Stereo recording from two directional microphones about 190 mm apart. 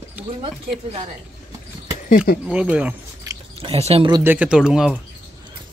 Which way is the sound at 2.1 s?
50° left (ahead or behind).